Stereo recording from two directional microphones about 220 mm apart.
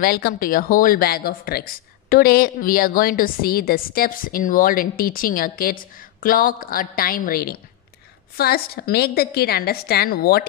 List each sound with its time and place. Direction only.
0.0 s a woman's voice: 45° left (ahead or behind)